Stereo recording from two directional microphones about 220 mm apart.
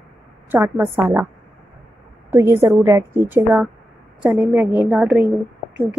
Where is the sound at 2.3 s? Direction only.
10° right (ahead or behind).